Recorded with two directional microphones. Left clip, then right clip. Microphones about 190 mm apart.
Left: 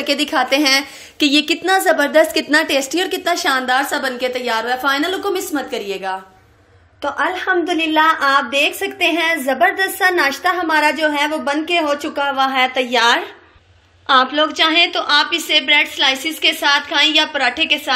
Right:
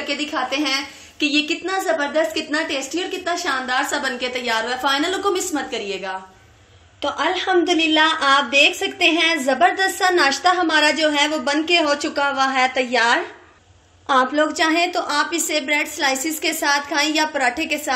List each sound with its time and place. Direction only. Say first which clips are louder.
0.0 s a woman's voice: left 6 dB; 45° left (ahead or behind); by 6.1 s 20° left (ahead or behind)
7.2 s a woman's voice: left 1 dB; 5° right (ahead or behind)